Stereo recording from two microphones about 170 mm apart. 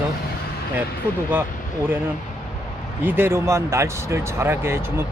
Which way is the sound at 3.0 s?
10° right (ahead or behind).